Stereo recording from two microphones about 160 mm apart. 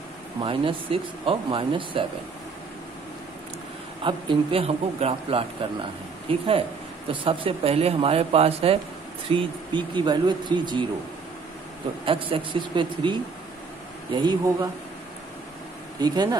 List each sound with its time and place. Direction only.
0.4 s speech: 35° right (ahead or behind)
4.0 s speech: 35° right (ahead or behind)
12.0 s speech: 35° right (ahead or behind)
16.0 s speech: 25° right (ahead or behind)